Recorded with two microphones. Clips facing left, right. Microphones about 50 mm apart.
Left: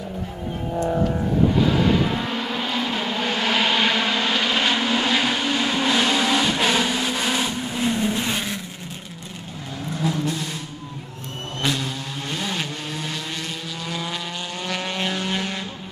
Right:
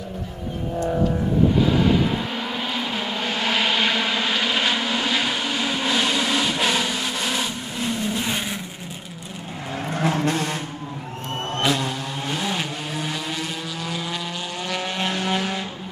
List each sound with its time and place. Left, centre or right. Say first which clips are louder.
1.6 s vehicle: even; centre
8.3 s vehicle: even; centre
9.8 s vehicle: right 2 dB; right
11.6 s vehicle: right 2 dB; centre